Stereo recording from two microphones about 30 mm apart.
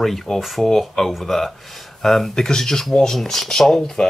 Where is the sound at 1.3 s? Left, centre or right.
Centre.